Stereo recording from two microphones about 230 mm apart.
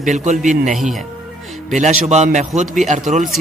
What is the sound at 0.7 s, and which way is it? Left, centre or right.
Speech, centre.